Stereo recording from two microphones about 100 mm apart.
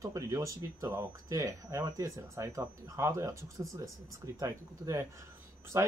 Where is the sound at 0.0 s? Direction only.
30° right (ahead or behind).